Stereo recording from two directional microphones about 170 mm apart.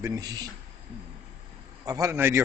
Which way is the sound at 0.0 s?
20° right (ahead or behind).